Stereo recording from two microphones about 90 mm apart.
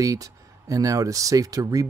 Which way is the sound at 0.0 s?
40° right (ahead or behind).